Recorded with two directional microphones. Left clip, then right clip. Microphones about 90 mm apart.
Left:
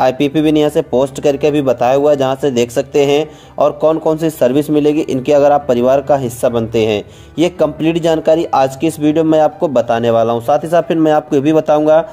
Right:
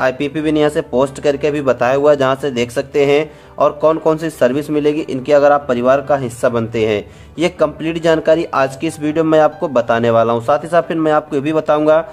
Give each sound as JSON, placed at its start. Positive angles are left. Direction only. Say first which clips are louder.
{"t": 0.0, "sound": "speech", "louder": "left 4 dB", "side_deg": 25}